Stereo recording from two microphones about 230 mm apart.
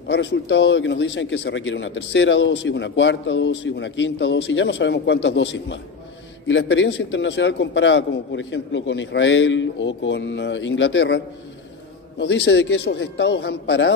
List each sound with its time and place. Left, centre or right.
0.1 s speech: left